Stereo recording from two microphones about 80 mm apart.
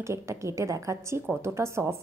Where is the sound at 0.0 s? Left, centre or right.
Right.